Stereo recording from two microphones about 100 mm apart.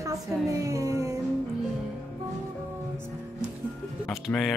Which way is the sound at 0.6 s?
30° right (ahead or behind).